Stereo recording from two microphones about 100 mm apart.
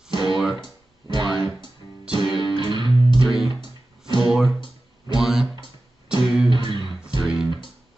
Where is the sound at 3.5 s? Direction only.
50° left (ahead or behind).